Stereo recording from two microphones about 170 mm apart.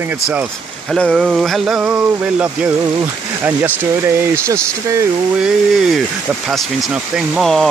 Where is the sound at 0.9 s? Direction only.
Centre (ahead or behind).